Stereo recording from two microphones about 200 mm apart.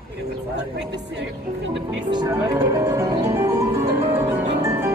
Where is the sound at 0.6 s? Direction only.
60° right (ahead or behind).